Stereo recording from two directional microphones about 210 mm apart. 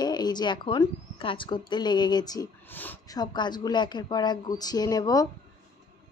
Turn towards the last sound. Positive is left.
turn(degrees=15)  # may be behind; listen again after turning